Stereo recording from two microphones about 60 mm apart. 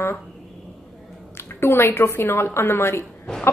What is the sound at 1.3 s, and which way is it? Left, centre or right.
A woman's voice, left.